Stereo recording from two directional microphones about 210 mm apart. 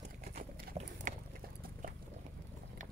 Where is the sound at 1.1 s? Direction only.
35° right (ahead or behind).